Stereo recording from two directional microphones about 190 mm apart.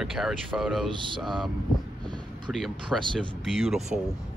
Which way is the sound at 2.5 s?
Centre (ahead or behind).